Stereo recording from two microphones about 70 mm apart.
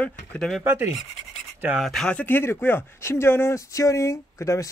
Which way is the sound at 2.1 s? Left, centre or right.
Left.